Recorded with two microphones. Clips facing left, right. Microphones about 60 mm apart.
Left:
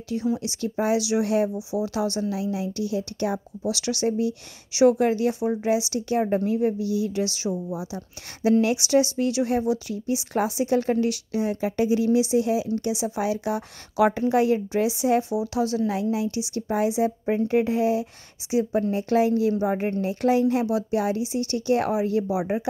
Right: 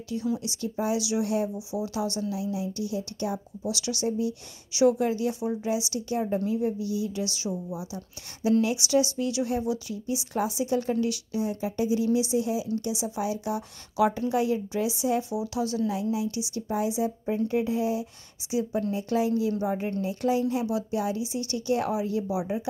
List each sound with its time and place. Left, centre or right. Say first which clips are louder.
0.4 s a woman's voice: left 4 dB; left
3.6 s a woman's voice: left 4 dB; left
18.5 s speech: left 5 dB; left
18.9 s speech: left 5 dB; left
20.0 s speech: left 5 dB; left
22.3 s a woman's voice: left 4 dB; left